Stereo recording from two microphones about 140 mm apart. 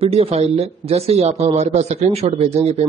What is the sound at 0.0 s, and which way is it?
Speech, 45° right (ahead or behind).